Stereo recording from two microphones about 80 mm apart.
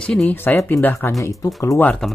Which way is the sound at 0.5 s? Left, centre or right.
Left.